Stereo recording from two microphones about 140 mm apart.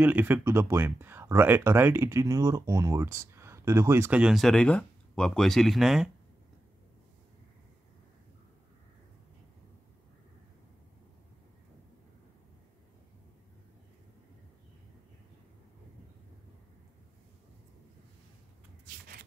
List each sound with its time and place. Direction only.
0.0 s speech: 15° right (ahead or behind)